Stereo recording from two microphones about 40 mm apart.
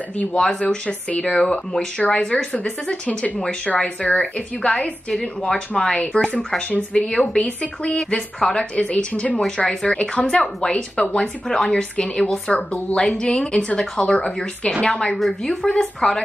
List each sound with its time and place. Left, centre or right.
0.3 s speech: centre
0.8 s speech: left
1.4 s speech: centre
2.0 s speech: left
3.6 s speech: left
8.1 s speech: centre
8.7 s speech: left
10.2 s speech: centre
13.0 s speech: centre
15.8 s speech: centre